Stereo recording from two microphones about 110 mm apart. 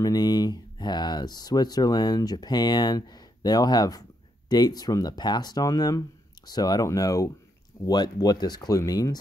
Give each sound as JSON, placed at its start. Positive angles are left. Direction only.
{"t": 0.0, "sound": "speech", "side_deg": 35}